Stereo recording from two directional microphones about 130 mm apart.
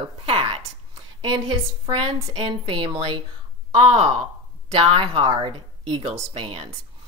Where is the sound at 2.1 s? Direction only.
40° right (ahead or behind).